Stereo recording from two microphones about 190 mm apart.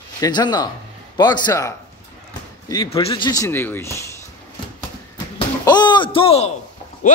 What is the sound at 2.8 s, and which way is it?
Speech, 30° left (ahead or behind).